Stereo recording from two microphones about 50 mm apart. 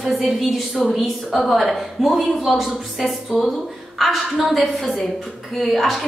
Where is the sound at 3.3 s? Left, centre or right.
Centre.